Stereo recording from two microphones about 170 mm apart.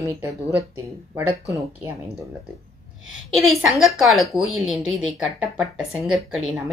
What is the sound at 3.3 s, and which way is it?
Speech, centre (ahead or behind).